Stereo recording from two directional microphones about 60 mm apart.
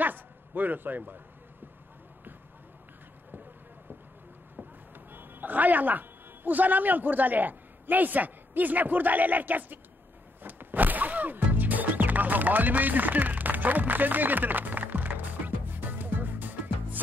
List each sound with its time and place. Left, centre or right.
0.0 s a sound: right
4.9 s a woman's voice: right
10.4 s music: right